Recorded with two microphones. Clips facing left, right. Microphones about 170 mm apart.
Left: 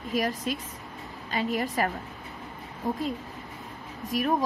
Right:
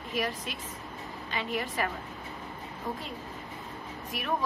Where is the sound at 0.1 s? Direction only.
40° left (ahead or behind).